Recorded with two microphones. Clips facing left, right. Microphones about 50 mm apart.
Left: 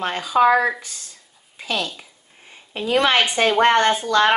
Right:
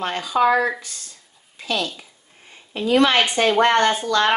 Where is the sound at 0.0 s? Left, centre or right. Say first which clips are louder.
Left 2 dB; centre.